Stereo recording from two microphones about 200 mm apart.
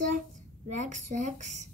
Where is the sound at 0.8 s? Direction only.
35° right (ahead or behind).